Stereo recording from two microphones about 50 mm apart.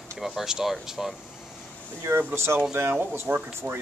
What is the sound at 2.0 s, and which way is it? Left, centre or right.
Speech, right.